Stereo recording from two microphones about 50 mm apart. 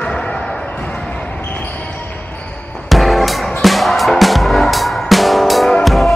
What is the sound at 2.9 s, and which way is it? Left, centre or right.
Music, centre.